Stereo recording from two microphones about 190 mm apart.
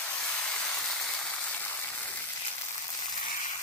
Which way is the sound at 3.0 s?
20° left (ahead or behind).